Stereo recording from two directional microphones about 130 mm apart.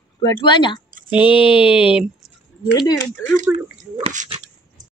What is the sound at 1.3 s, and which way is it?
Speech, 45° left (ahead or behind).